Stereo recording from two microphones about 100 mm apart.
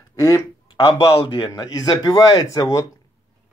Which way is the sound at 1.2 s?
50° left (ahead or behind).